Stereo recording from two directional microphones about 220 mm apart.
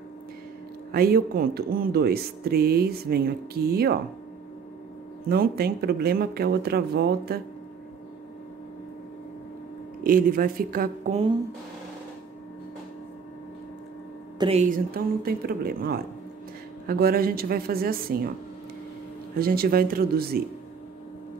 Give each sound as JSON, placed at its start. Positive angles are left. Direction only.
{"t": 0.9, "sound": "speech", "side_deg": -45}
{"t": 5.3, "sound": "speech", "side_deg": -45}
{"t": 10.0, "sound": "a woman's voice", "side_deg": -40}
{"t": 14.4, "sound": "a woman's voice", "side_deg": -30}
{"t": 19.3, "sound": "speech", "side_deg": -45}